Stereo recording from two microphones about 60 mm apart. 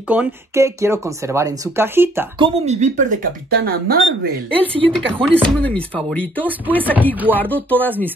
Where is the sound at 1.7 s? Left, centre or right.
Right.